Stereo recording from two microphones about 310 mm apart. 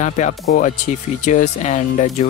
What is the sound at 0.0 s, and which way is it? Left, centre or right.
Speech, left.